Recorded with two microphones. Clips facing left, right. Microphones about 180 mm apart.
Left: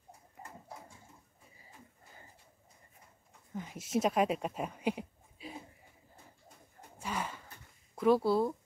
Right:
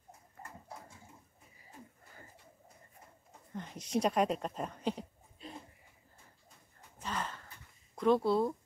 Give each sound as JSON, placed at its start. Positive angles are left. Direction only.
{"t": 0.4, "sound": "pigeon", "side_deg": 15}
{"t": 3.5, "sound": "speech", "side_deg": 5}
{"t": 7.0, "sound": "a sound", "side_deg": 10}
{"t": 7.9, "sound": "speech", "side_deg": 5}